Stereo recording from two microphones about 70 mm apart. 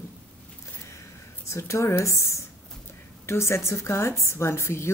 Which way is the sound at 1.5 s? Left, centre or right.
Left.